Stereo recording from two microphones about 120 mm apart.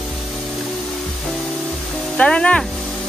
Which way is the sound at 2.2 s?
10° left (ahead or behind).